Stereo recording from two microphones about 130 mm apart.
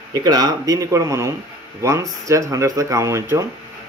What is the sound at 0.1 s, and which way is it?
Speech, 30° right (ahead or behind).